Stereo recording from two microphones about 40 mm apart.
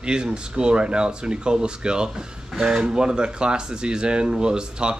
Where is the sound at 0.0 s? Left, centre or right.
Right.